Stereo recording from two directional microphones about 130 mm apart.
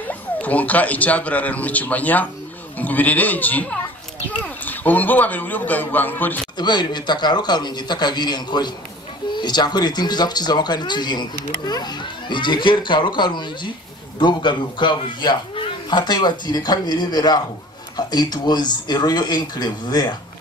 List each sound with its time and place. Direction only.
0.1 s speech: 10° left (ahead or behind)
6.6 s a man's voice: 35° left (ahead or behind)